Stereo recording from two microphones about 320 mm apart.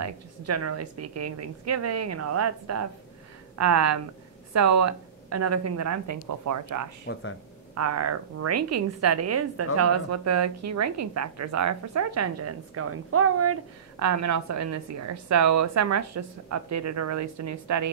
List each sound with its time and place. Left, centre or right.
0.0 s a woman's voice: right
7.1 s speech: left
7.7 s a woman's voice: right
13.9 s a woman's voice: right